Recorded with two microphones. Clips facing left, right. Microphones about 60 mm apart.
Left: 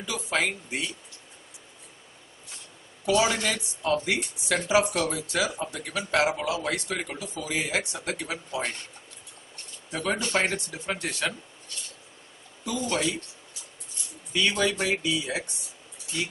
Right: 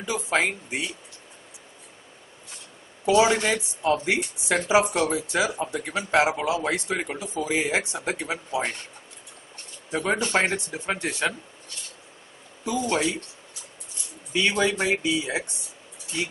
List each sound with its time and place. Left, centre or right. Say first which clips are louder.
0.0 s speech: right 3 dB; right
3.1 s speech: right 4 dB; right
9.8 s speech: right 4 dB; right
14.3 s speech: right 2 dB; right